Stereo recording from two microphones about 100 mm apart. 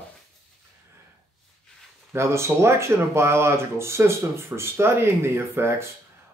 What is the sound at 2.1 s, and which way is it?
Speech, 25° right (ahead or behind).